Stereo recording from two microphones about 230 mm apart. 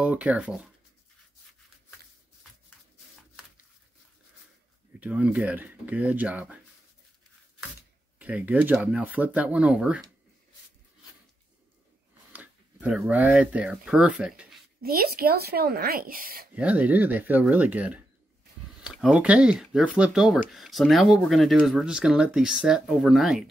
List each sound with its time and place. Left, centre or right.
0.0 s speech: centre
5.0 s speech: centre
8.2 s speech: centre
12.3 s speech: centre
14.8 s speech: right
16.5 s speech: centre